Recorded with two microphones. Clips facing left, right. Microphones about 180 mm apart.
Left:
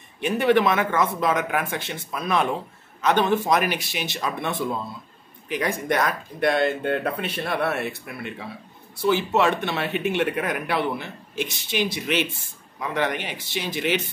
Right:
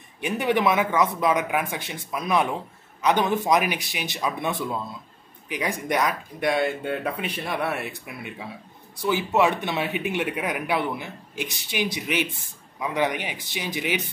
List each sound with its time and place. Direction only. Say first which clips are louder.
0.2 s speech: left 3 dB; 15° right (ahead or behind)